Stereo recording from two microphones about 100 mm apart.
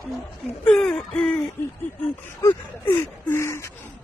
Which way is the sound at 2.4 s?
30° left (ahead or behind).